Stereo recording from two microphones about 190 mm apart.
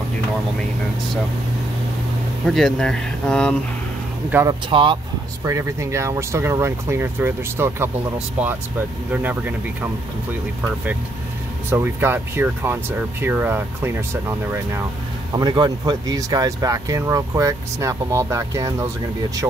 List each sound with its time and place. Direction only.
2.4 s speech: centre (ahead or behind)
4.3 s speech: 15° right (ahead or behind)
4.6 s speech: 25° right (ahead or behind)
5.4 s speech: 15° right (ahead or behind)
9.1 s speech: 10° right (ahead or behind)
11.7 s speech: 10° right (ahead or behind)
15.3 s speech: 20° right (ahead or behind)